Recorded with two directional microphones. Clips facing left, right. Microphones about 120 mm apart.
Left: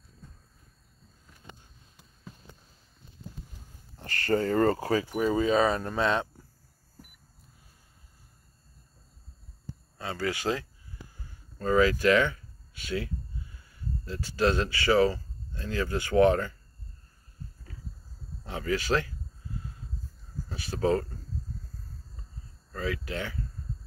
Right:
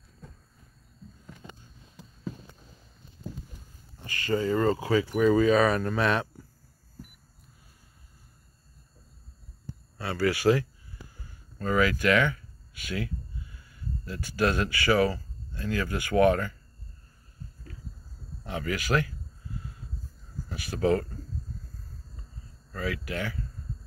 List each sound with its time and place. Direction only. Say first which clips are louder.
4.0 s speech: left 1 dB; 55° left (ahead or behind)
4.7 s speech: right 2 dB; 35° left (ahead or behind)
9.9 s speech: right 4 dB; 20° left (ahead or behind)
18.4 s speech: left 2 dB; 30° left (ahead or behind)
20.4 s speech: right 1 dB; 25° left (ahead or behind)
22.8 s speech: even; 25° left (ahead or behind)